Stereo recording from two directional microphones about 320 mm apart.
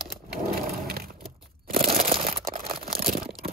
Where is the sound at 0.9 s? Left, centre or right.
Right.